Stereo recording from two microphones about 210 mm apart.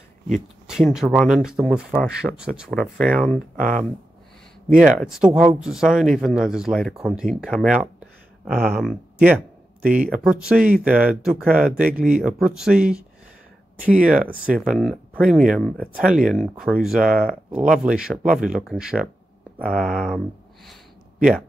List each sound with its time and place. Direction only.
0.7 s speech: centre (ahead or behind)
3.5 s speech: 40° right (ahead or behind)
4.9 s speech: centre (ahead or behind)
14.0 s speech: 5° right (ahead or behind)